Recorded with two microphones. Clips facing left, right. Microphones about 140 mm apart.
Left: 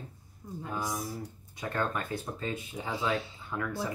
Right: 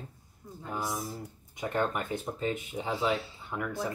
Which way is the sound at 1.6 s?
20° right (ahead or behind).